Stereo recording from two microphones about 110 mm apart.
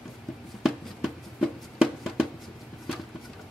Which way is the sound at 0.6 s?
5° right (ahead or behind).